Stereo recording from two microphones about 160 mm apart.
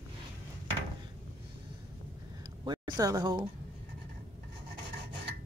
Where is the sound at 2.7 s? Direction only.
25° right (ahead or behind).